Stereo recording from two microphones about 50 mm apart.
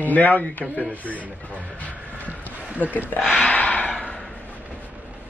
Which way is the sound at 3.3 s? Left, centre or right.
Left.